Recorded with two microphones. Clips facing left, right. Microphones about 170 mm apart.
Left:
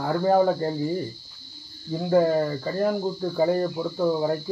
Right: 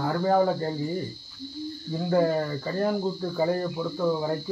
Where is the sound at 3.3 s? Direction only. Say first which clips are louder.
Left 4 dB; 20° left (ahead or behind).